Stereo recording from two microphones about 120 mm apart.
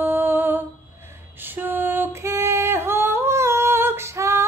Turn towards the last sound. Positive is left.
turn(degrees=-25)  # may be behind; listen again after turning